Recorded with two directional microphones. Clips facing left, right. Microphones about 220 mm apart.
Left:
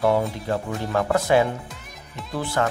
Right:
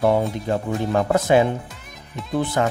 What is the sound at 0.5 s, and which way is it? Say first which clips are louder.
Speech: right 3 dB; 20° right (ahead or behind).